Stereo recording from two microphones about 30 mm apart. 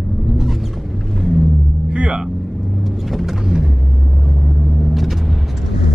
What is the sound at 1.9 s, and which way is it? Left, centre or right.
Vehicle, right.